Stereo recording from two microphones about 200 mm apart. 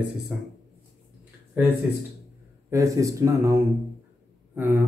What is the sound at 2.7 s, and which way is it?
Speech, 15° right (ahead or behind).